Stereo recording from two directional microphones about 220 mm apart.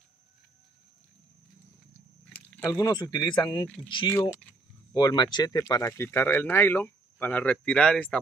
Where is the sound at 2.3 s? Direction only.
10° left (ahead or behind).